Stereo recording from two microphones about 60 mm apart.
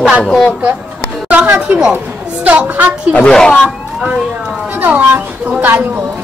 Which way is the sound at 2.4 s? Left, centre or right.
Right.